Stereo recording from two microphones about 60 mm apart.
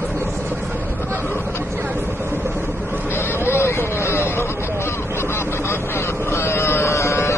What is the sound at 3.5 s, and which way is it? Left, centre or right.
Vehicle, left.